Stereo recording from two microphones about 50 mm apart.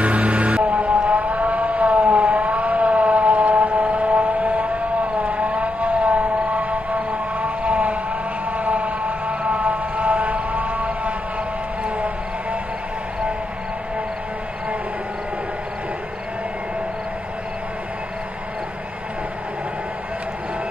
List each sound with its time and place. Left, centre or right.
0.0 s music: right
1.0 s vehicle: right
8.5 s a sound: right